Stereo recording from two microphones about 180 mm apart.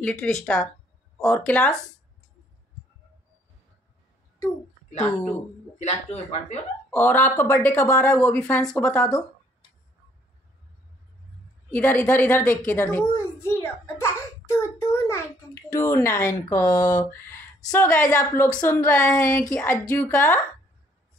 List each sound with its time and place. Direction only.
0.0 s speech: 5° left (ahead or behind)
5.8 s speech: 35° left (ahead or behind)
6.9 s a child's voice: 10° left (ahead or behind)
11.7 s a child's voice: 10° left (ahead or behind)